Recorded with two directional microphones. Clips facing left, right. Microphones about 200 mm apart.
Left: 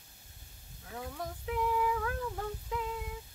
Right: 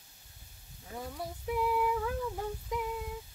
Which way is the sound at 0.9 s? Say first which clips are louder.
Even; 10° right (ahead or behind).